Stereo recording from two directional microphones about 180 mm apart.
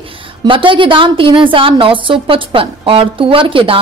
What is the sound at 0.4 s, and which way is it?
A woman's voice, 30° right (ahead or behind).